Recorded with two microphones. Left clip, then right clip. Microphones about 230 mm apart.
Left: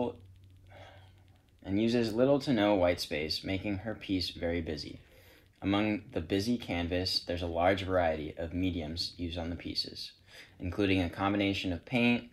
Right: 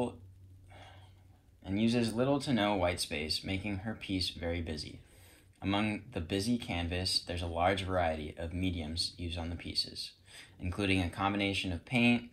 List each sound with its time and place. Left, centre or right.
1.6 s speech: right